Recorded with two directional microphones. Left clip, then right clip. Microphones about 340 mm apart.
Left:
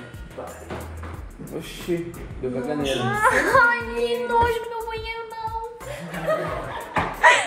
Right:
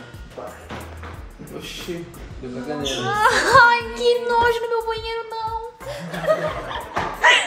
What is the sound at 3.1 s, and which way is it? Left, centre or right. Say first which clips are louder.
Speech: right 3 dB; centre.